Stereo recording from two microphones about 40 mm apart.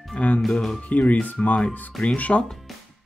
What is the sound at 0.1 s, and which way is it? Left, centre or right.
Speech, left.